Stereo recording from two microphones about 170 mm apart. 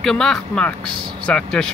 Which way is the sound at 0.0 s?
Centre (ahead or behind).